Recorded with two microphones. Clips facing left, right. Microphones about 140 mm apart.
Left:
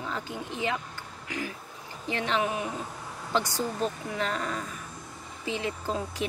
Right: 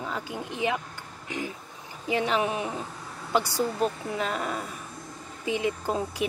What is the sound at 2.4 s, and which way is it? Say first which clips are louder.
Speech: right 1 dB; 20° right (ahead or behind).